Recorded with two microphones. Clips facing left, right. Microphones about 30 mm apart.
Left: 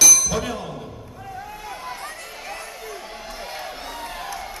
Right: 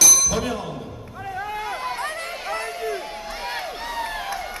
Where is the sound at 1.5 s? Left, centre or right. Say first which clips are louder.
Right 7 dB; right.